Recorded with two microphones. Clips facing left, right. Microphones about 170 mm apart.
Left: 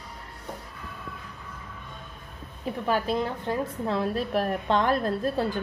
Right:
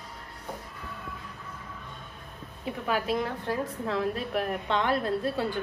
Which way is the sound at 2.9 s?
30° left (ahead or behind).